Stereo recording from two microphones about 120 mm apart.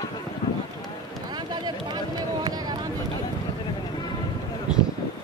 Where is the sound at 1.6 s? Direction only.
35° right (ahead or behind).